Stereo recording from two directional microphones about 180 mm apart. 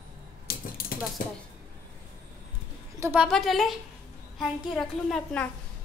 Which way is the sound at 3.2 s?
Centre (ahead or behind).